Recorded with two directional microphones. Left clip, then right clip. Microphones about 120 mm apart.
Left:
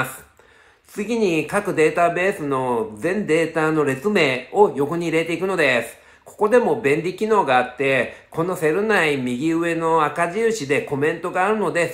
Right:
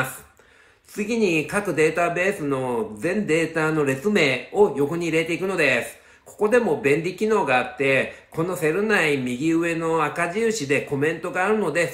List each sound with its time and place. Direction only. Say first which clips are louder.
0.9 s speech: left 1 dB; 35° left (ahead or behind)